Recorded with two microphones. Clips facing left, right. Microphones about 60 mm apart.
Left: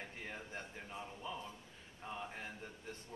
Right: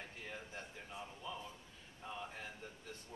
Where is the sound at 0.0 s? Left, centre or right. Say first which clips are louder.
Left 2 dB; centre.